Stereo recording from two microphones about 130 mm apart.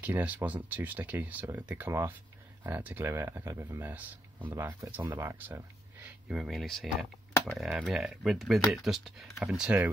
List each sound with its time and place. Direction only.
0.0 s speech: 10° right (ahead or behind)
6.2 s speech: 5° right (ahead or behind)